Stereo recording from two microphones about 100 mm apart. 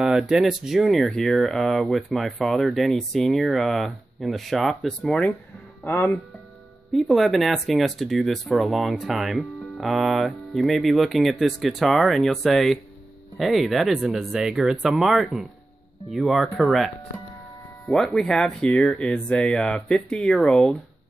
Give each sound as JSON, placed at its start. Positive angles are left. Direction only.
{"t": 0.0, "sound": "speech", "side_deg": -5}
{"t": 5.9, "sound": "speech", "side_deg": 20}
{"t": 6.9, "sound": "speech", "side_deg": 0}